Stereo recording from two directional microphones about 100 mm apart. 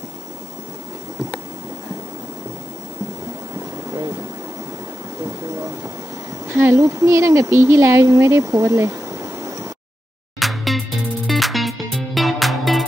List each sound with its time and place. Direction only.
6.4 s speech: 25° right (ahead or behind)
10.4 s music: centre (ahead or behind)